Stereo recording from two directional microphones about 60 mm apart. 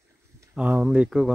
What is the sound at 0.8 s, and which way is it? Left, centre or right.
Speech, right.